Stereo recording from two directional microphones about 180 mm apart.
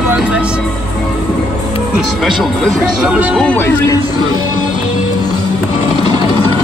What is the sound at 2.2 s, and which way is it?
Speech, centre (ahead or behind).